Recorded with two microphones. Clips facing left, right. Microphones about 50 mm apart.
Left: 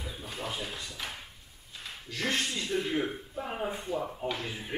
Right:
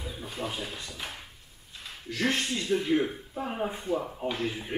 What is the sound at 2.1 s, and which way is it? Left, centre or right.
Speech, right.